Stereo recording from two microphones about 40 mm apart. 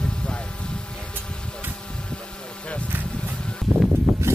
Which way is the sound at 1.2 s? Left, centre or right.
Left.